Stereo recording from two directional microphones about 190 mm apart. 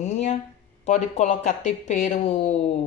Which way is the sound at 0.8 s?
40° left (ahead or behind).